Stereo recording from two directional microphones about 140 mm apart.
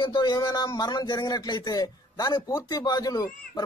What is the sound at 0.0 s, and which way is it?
Speech, 30° left (ahead or behind).